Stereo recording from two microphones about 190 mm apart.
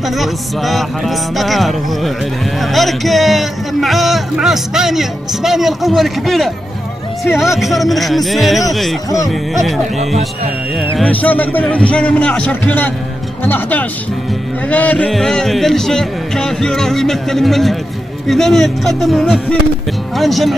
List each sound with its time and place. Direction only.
0.2 s a man's voice: centre (ahead or behind)
11.0 s a man's voice: 10° left (ahead or behind)